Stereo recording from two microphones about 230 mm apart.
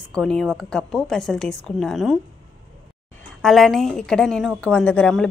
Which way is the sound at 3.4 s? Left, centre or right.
Centre.